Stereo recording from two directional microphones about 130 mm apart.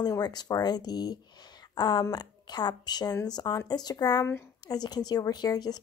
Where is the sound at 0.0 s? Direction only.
30° left (ahead or behind).